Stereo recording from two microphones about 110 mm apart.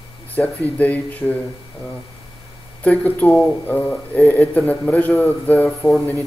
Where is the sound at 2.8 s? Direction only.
15° left (ahead or behind).